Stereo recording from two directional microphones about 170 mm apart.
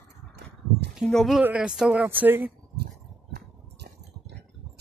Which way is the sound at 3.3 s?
70° right (ahead or behind).